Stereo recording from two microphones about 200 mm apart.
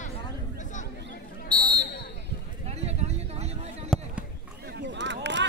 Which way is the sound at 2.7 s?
30° right (ahead or behind).